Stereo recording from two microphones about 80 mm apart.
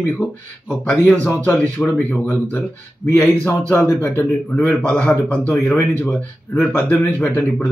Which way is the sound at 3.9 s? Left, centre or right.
Left.